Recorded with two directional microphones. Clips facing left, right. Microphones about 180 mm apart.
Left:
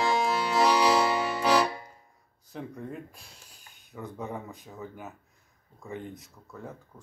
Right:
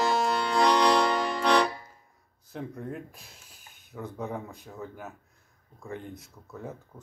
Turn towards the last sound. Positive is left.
turn(degrees=5)  # may be behind; listen again after turning